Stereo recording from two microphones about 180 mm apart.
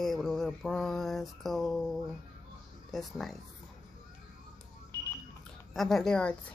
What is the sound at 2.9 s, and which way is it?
Speech, centre (ahead or behind).